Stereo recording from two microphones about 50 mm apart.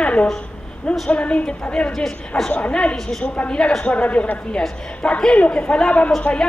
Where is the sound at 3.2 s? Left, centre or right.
Left.